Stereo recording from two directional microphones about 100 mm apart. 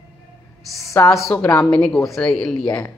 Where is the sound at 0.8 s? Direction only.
30° left (ahead or behind).